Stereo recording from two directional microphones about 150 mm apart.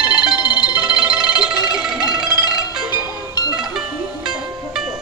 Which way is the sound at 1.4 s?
5° right (ahead or behind).